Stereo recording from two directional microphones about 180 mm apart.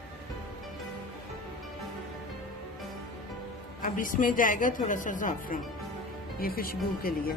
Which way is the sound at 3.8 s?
50° left (ahead or behind).